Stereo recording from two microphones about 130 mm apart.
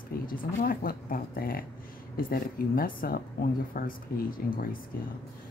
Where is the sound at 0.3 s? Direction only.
90° left.